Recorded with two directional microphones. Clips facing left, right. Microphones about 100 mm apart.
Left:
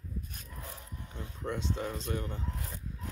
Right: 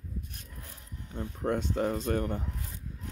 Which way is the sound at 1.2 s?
50° right (ahead or behind).